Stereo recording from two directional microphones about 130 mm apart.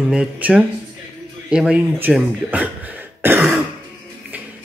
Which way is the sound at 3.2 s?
15° right (ahead or behind).